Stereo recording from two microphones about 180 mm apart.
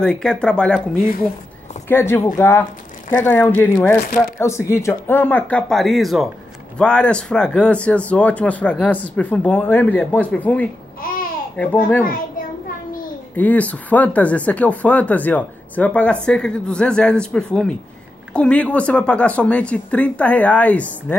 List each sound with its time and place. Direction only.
0.0 s speech: 5° left (ahead or behind)
1.9 s speech: 15° left (ahead or behind)
11.0 s babbling: 55° left (ahead or behind)
11.5 s speech: 10° left (ahead or behind)
13.4 s speech: 10° left (ahead or behind)